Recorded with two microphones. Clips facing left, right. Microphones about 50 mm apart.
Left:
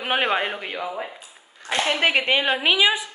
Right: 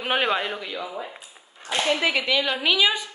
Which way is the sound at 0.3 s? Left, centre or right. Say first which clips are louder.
Left 2 dB; left.